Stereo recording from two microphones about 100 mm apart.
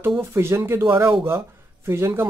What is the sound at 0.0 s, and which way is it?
Speech, 25° right (ahead or behind).